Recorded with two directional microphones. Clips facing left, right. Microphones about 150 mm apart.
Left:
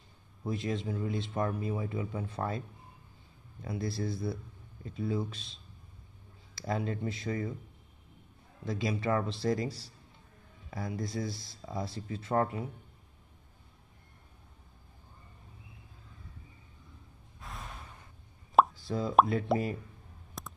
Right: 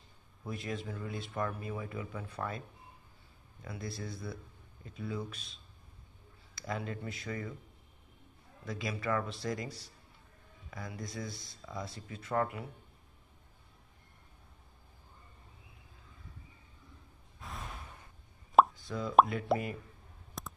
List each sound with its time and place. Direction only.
0.5 s speech: 25° left (ahead or behind)
3.6 s speech: 30° left (ahead or behind)
8.6 s speech: 25° left (ahead or behind)
17.4 s a sound: centre (ahead or behind)
18.8 s speech: 30° left (ahead or behind)
19.5 s speech: centre (ahead or behind)
20.4 s a sound: centre (ahead or behind)